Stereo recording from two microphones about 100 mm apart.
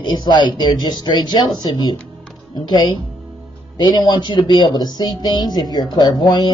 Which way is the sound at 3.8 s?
50° left (ahead or behind).